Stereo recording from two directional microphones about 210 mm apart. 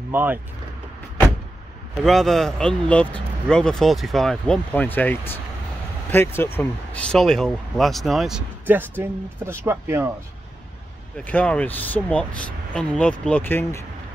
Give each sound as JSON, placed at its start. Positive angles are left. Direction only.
{"t": 0.1, "sound": "speech", "side_deg": -10}
{"t": 2.0, "sound": "speech", "side_deg": 0}
{"t": 11.2, "sound": "speech", "side_deg": 5}